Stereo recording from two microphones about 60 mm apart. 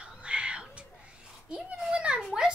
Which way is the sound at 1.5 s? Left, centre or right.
Centre.